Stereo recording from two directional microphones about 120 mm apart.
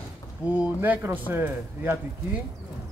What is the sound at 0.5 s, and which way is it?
Speech, 15° right (ahead or behind).